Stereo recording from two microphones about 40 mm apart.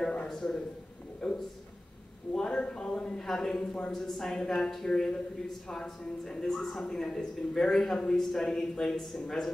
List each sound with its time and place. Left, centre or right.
0.3 s a man's voice: centre
2.9 s speech: centre
3.5 s speech: left
3.9 s speech: centre
6.8 s speech: centre